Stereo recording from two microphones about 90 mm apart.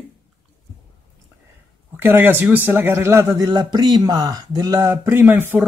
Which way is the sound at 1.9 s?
25° right (ahead or behind).